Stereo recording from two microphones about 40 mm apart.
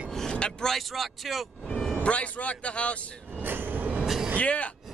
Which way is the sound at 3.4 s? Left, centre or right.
Right.